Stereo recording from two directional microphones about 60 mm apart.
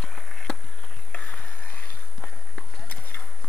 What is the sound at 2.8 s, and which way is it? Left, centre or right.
Clip-clop, left.